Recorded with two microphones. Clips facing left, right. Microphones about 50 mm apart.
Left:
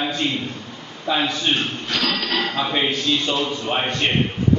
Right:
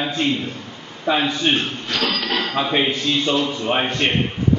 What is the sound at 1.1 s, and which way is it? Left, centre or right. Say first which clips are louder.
Speech: right 2 dB; centre.